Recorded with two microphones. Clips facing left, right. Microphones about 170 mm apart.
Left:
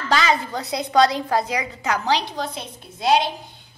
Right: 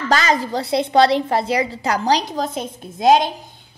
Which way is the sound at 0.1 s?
40° right (ahead or behind).